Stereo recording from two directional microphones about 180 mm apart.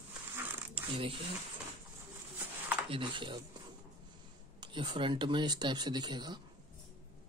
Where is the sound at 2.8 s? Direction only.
30° right (ahead or behind).